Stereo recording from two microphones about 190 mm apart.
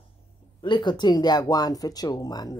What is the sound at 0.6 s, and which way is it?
Speech, 25° left (ahead or behind).